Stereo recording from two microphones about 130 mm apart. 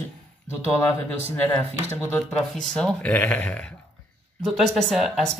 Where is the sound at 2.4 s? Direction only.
5° left (ahead or behind).